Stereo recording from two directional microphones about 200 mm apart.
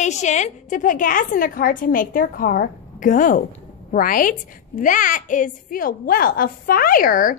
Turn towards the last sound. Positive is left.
turn(degrees=45)  # may be behind; listen again after turning